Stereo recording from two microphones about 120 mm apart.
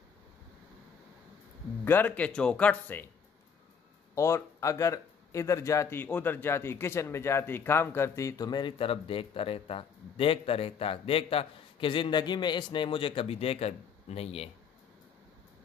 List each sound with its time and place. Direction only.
1.9 s speech: 15° left (ahead or behind)
4.1 s speech: 25° left (ahead or behind); by 14.5 s 55° left (ahead or behind)